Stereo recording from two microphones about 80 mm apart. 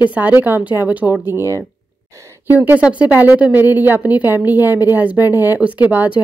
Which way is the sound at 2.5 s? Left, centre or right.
Right.